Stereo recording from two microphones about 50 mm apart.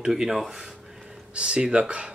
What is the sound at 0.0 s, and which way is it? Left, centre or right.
Speech, centre.